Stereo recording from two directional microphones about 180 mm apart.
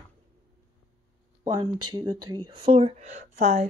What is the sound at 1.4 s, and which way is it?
Speech, 25° right (ahead or behind).